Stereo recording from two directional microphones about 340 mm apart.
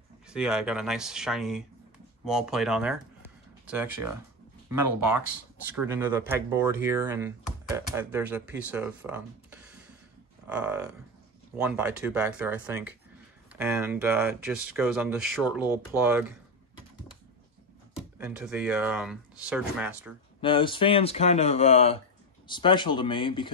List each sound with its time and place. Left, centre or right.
0.3 s speech: centre
5.7 s speech: centre
18.1 s speech: centre
20.3 s speech: centre